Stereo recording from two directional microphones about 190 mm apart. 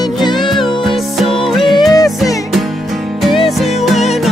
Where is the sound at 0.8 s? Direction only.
Centre (ahead or behind).